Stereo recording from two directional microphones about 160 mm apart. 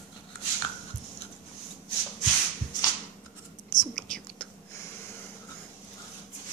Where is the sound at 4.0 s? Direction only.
5° left (ahead or behind).